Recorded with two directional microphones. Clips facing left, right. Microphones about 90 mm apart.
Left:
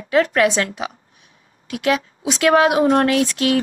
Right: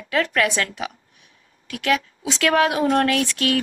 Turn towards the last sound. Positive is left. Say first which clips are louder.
# left 4 dB
turn(degrees=25)  # may be behind; listen again after turning